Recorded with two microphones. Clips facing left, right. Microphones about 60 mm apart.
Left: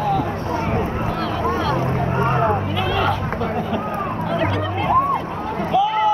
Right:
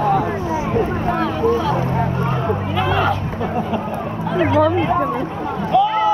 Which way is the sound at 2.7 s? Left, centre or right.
Centre.